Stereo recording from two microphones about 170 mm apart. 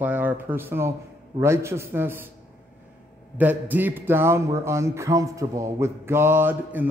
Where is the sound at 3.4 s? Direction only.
10° right (ahead or behind).